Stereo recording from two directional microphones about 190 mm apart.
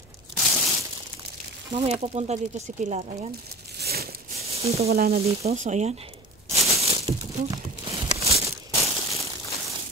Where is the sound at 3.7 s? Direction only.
55° right (ahead or behind).